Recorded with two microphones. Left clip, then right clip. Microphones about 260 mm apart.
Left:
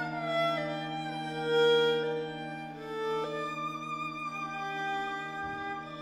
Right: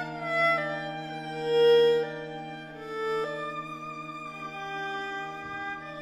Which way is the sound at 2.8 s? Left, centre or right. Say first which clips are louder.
Right 3 dB; centre.